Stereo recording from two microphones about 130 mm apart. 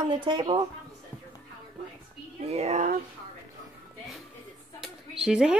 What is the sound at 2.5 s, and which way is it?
Speech, 55° right (ahead or behind).